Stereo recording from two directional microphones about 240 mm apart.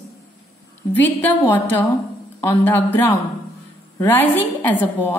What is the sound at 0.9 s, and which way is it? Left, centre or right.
A woman's voice, centre.